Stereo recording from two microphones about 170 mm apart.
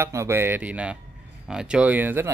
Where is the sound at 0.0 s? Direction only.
15° right (ahead or behind).